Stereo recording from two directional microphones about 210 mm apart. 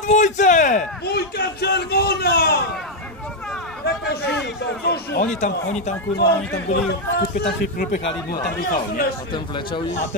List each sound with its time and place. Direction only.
0.0 s speech: 35° left (ahead or behind)
1.0 s speech: 50° left (ahead or behind)
3.8 s a sound: 50° left (ahead or behind)
4.8 s speech: 50° left (ahead or behind)
8.0 s speech: 55° left (ahead or behind)
8.5 s speech: 45° left (ahead or behind)
9.3 s speech: 25° left (ahead or behind)